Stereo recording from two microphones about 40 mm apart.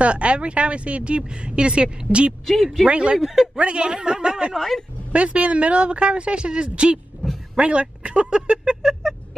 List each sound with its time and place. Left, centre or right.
0.0 s speech: right
2.4 s speech: centre
2.9 s speech: right
3.2 s speech: centre
3.5 s speech: right
4.6 s speech: centre
5.1 s speech: right
7.2 s a sound: left
7.5 s speech: right